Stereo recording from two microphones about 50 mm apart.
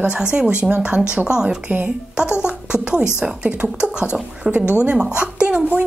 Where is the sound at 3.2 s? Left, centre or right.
Right.